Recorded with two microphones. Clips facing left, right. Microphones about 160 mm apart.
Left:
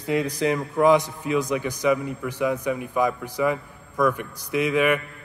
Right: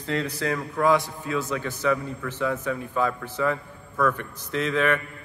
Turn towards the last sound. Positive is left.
turn(degrees=10)  # may be behind; listen again after turning